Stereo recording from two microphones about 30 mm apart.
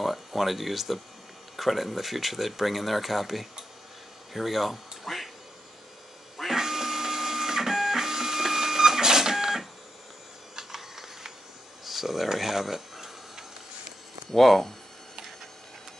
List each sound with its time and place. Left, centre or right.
0.0 s speech: centre
4.3 s quack: centre
6.5 s printer: centre
10.5 s a sound: centre
14.3 s speech: centre